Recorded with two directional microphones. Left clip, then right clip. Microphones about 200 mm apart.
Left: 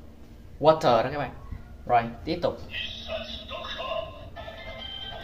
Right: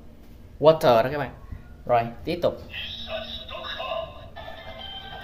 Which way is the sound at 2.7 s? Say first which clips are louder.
Right 1 dB; 10° right (ahead or behind).